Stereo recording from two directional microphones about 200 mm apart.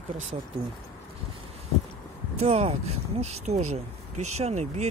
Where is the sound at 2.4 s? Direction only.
30° right (ahead or behind).